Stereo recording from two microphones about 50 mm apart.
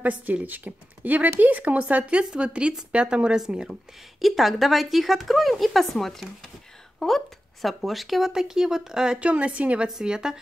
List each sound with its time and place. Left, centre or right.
0.0 s speech: right
3.3 s speech: centre
9.2 s speech: right
9.8 s speech: centre